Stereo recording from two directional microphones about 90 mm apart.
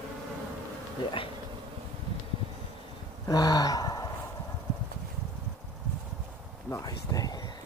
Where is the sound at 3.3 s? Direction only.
45° left (ahead or behind).